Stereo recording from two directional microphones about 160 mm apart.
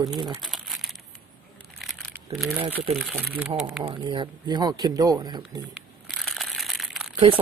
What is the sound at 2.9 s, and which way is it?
Speech, 5° right (ahead or behind).